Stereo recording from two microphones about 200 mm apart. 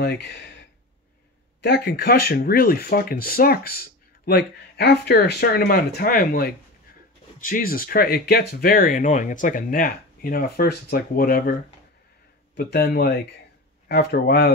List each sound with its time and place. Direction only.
1.6 s speech: 55° left (ahead or behind)